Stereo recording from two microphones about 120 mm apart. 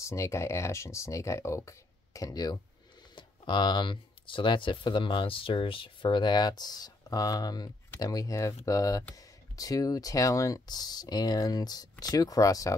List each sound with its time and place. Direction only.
0.0 s speech: 25° left (ahead or behind)